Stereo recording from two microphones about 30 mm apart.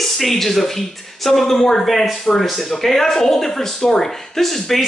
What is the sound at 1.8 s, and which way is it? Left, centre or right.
A man's voice, centre.